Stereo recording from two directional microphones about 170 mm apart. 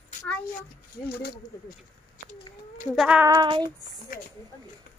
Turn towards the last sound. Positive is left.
turn(degrees=-25)  # may be behind; listen again after turning